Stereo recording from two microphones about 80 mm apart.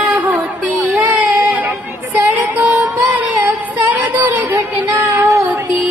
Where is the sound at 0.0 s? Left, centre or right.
Right.